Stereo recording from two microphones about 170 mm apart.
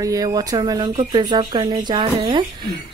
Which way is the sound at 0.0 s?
20° right (ahead or behind).